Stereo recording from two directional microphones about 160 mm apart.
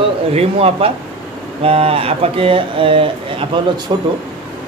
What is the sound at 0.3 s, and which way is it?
Speech, 40° right (ahead or behind).